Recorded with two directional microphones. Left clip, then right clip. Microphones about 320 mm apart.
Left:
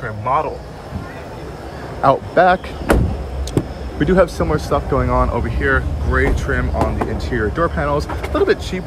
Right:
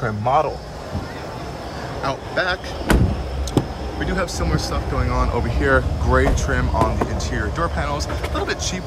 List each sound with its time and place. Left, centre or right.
2.0 s speech: centre
4.0 s speech: centre